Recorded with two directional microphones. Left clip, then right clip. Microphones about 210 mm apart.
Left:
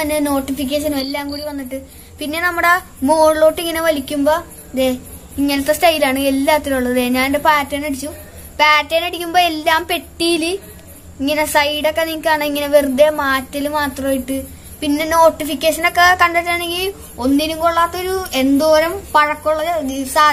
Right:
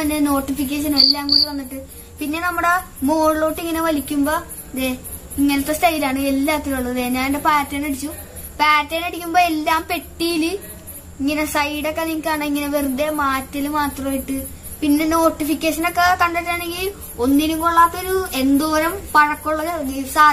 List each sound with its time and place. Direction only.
0.0 s a woman's voice: 40° left (ahead or behind)